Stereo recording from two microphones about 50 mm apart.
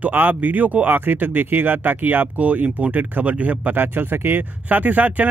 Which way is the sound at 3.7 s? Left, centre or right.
Right.